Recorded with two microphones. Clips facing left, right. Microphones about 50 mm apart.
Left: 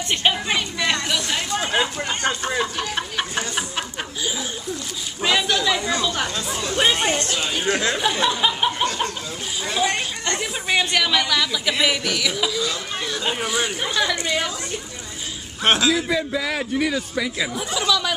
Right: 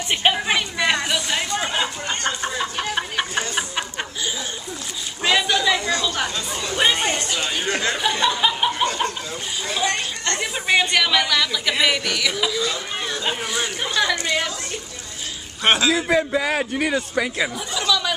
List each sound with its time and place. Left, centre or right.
0.1 s a woman's voice: centre
1.7 s speech: centre
2.6 s snicker: centre
5.2 s a sound: centre
5.9 s chatter: centre
6.1 s chatter: centre
9.7 s speech: centre
10.7 s speech: centre
15.6 s speech: centre
16.3 s speech: right
17.6 s a sound: centre